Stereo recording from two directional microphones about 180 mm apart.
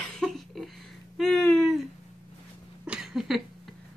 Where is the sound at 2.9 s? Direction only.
Centre (ahead or behind).